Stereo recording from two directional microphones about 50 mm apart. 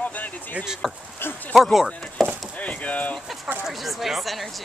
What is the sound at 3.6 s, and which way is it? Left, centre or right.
Speech, centre.